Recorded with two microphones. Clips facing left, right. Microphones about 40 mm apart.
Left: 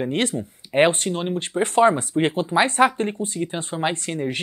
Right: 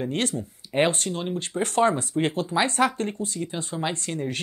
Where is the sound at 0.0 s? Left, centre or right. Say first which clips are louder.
Left 4 dB; left.